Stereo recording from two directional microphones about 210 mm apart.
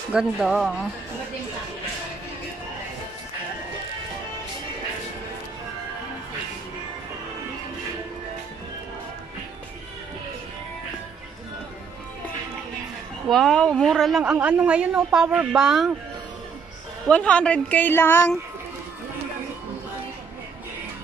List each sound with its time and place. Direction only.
0.1 s a woman's voice: 5° right (ahead or behind)
13.3 s a woman's voice: centre (ahead or behind)
17.1 s speech: 5° left (ahead or behind)